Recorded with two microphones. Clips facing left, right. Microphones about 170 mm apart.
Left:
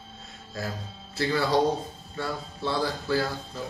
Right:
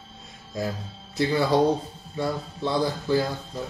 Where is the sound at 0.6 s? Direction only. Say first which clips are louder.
Right 5 dB; 20° right (ahead or behind).